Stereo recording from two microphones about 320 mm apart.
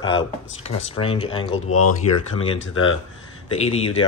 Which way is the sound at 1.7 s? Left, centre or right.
Left.